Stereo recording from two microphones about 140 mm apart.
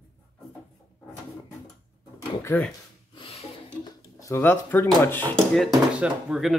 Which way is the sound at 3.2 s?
45° left (ahead or behind).